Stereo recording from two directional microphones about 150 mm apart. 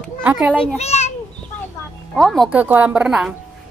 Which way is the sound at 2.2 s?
Centre (ahead or behind).